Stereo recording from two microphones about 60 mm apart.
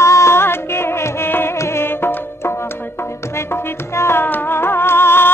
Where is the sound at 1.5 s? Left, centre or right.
Left.